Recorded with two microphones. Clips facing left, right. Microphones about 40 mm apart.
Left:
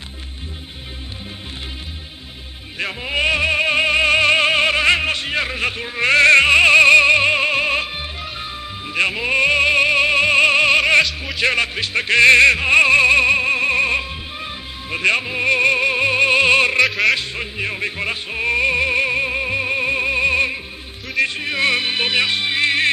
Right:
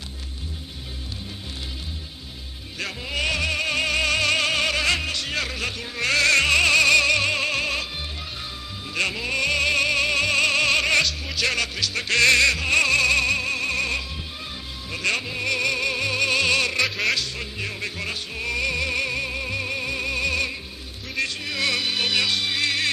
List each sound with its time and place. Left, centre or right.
2.8 s music: left
16.8 s music: centre
17.1 s music: left